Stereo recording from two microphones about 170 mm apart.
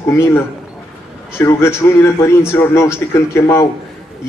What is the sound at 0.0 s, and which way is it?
Speech, 15° left (ahead or behind).